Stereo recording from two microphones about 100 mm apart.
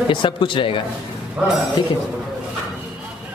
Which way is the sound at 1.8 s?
50° left (ahead or behind).